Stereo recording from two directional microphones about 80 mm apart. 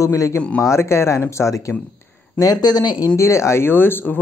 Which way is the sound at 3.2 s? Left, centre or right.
Left.